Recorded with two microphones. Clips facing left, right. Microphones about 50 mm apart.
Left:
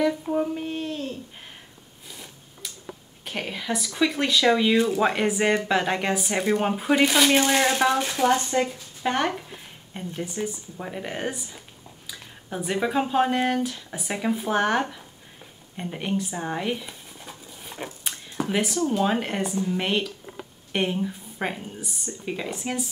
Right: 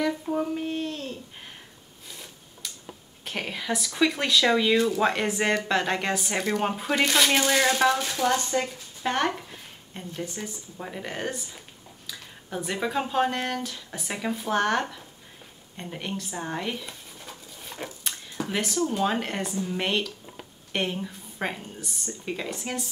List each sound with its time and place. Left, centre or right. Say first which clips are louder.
0.0 s speech: left 3 dB; centre
2.0 s a sound: left 1 dB; centre
3.3 s speech: left 1 dB; centre
7.3 s speech: left 2 dB; centre
15.7 s a sound: left 6 dB; centre
18.5 s speech: left 3 dB; centre